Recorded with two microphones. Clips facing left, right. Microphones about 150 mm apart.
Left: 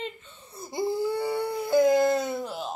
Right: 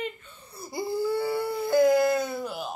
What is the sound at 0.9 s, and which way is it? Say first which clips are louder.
Baby cry: right 1 dB; 20° left (ahead or behind).